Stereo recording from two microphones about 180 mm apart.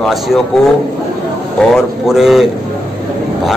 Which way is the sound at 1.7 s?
Centre (ahead or behind).